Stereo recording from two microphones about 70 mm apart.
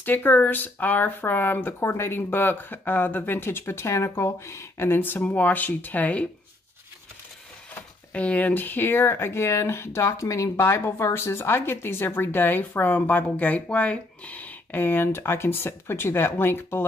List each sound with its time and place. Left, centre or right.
0.0 s speech: left
8.1 s speech: centre